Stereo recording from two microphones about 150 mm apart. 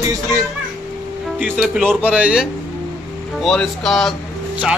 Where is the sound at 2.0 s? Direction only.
10° right (ahead or behind).